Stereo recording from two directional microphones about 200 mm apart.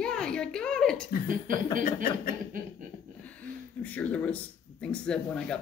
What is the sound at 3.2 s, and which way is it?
Speech, 5° left (ahead or behind).